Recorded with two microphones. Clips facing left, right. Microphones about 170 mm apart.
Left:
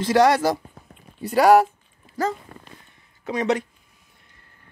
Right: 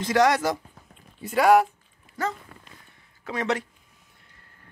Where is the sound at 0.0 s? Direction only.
30° left (ahead or behind).